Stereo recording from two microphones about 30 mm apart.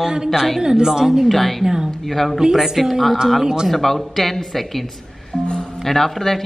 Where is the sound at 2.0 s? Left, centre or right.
Centre.